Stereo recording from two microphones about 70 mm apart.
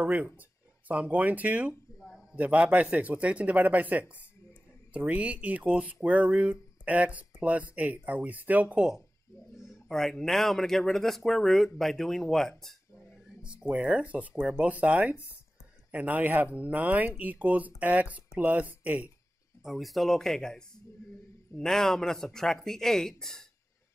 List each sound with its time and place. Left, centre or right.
0.0 s speech: right
2.0 s a sound: centre
2.3 s speech: right
9.7 s speech: centre
13.4 s speech: centre
19.6 s speech: centre